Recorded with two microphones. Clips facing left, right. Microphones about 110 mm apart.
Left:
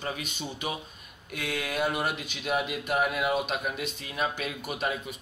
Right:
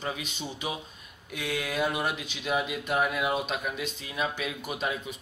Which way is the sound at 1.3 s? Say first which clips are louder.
Right 1 dB; 55° left (ahead or behind).